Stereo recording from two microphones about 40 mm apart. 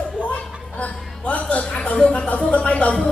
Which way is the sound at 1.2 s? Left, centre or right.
Left.